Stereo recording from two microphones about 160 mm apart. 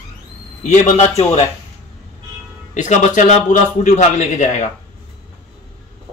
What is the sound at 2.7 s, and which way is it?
A man's voice, 50° left (ahead or behind).